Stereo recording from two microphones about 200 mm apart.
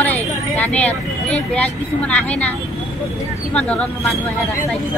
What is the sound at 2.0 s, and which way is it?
Speech, 5° left (ahead or behind).